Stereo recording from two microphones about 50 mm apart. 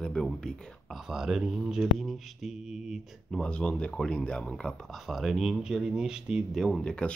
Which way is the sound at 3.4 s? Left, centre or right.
Left.